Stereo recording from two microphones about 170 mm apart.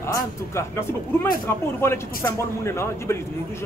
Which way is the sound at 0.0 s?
15° left (ahead or behind).